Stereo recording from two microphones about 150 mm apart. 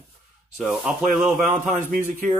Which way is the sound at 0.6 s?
Centre (ahead or behind).